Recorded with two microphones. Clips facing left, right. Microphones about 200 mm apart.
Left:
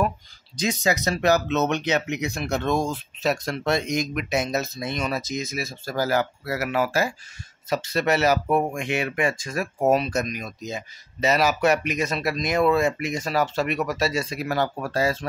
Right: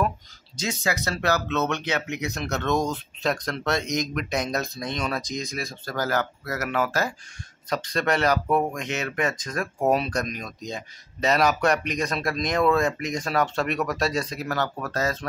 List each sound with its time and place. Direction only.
0.6 s speech: 15° left (ahead or behind)